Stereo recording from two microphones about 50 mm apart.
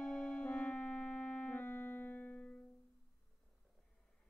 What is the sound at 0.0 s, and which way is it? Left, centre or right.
Music, centre.